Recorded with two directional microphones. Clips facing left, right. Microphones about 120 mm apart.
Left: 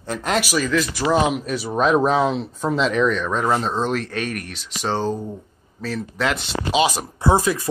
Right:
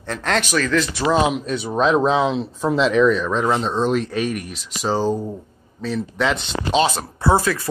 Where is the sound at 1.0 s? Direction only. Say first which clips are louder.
Right 1 dB; 15° right (ahead or behind).